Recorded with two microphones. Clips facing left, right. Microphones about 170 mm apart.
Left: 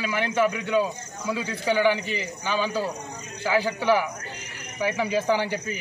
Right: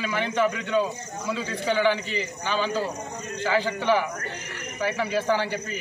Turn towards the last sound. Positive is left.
turn(degrees=15)  # may be behind; listen again after turning